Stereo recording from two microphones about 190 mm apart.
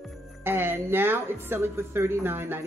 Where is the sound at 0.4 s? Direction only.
10° right (ahead or behind).